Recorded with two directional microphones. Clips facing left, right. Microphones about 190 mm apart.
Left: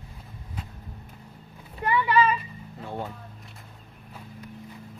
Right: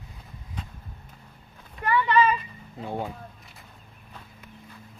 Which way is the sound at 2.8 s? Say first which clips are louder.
Right 3 dB; 15° right (ahead or behind).